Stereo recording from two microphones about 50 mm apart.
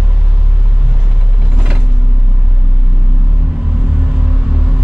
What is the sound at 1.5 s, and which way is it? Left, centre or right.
Creak, centre.